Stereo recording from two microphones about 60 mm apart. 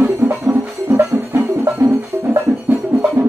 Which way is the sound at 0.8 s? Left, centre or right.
Right.